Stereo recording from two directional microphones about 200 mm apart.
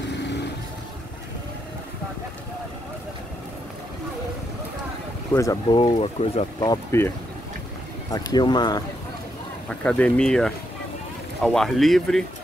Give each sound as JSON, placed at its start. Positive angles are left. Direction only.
{"t": 0.1, "sound": "vehicle", "side_deg": 60}
{"t": 5.3, "sound": "speech", "side_deg": 15}
{"t": 6.6, "sound": "speech", "side_deg": 15}
{"t": 9.7, "sound": "speech", "side_deg": 5}